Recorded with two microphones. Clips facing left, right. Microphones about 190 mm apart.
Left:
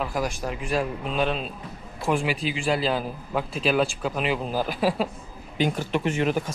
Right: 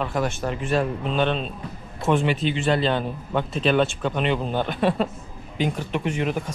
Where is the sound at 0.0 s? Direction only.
Centre (ahead or behind).